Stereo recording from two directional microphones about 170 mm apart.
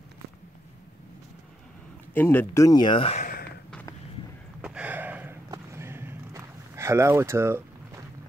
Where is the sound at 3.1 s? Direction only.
55° left (ahead or behind).